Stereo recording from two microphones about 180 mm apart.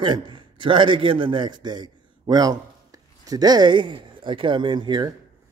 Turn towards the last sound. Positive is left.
turn(degrees=-25)  # may be behind; listen again after turning